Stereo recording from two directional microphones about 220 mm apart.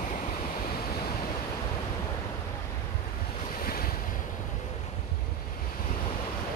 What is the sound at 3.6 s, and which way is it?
Waves, 40° left (ahead or behind).